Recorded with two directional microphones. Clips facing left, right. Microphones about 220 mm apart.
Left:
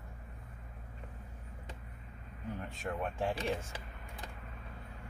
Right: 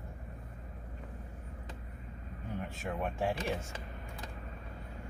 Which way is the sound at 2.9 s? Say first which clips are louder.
Left 1 dB; 10° right (ahead or behind).